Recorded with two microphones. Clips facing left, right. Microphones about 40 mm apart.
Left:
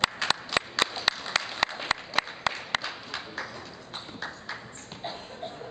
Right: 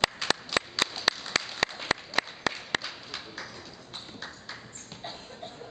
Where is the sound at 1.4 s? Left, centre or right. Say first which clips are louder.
Left 2 dB; centre.